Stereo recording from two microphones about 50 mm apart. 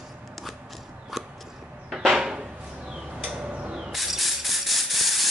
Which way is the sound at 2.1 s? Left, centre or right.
Centre.